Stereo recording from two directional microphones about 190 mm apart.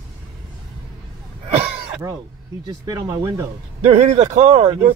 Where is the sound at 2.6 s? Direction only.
20° right (ahead or behind).